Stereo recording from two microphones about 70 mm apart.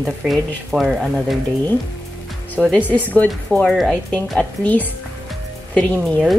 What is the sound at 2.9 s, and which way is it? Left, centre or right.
Speech, left.